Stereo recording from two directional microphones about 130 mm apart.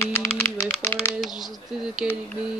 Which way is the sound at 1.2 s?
Centre (ahead or behind).